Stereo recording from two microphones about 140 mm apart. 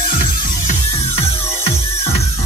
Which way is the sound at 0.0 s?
90° left.